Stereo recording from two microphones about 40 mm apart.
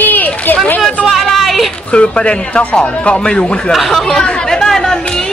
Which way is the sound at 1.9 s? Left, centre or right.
Left.